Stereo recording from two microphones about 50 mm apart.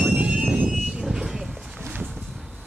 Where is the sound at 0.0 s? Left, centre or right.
Centre.